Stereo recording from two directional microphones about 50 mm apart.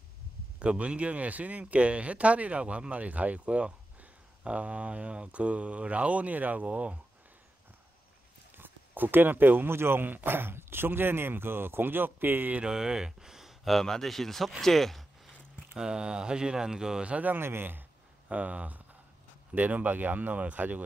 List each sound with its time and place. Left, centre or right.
0.6 s speech: right
8.5 s speech: right
12.5 s speech: centre
13.7 s speech: centre
14.6 s a sound: centre
15.7 s speech: centre
17.1 s speech: right
17.4 s speech: right
18.3 s speech: right